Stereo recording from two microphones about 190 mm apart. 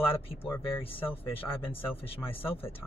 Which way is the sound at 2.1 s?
30° left (ahead or behind).